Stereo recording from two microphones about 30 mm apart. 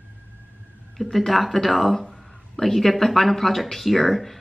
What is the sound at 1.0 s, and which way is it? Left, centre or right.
Speech, centre.